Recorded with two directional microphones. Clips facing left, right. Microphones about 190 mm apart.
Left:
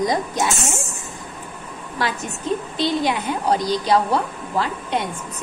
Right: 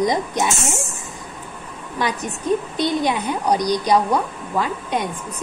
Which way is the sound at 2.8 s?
20° right (ahead or behind).